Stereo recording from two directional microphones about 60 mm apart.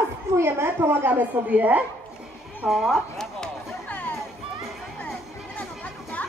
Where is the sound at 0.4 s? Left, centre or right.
Right.